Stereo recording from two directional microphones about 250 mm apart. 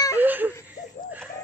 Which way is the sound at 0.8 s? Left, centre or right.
Left.